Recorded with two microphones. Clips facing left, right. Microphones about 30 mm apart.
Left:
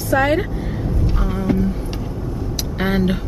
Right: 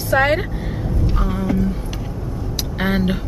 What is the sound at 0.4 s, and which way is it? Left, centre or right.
Vehicle, centre.